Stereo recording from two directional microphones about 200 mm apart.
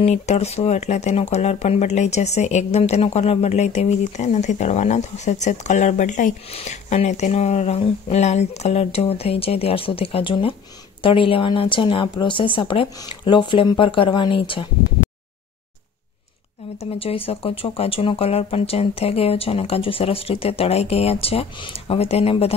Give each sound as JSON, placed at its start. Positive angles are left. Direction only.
{"t": 0.0, "sound": "speech", "side_deg": 30}
{"t": 17.0, "sound": "speech", "side_deg": 30}